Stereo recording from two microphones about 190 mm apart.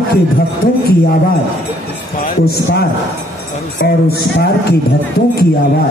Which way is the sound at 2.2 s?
55° left (ahead or behind).